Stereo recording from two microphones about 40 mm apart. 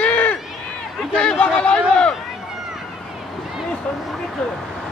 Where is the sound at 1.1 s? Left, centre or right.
Left.